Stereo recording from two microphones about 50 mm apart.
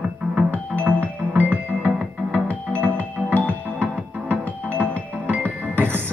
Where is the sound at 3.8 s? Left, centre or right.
Right.